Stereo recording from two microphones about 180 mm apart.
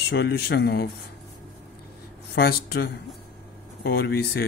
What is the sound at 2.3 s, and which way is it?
A man's voice, 70° left (ahead or behind).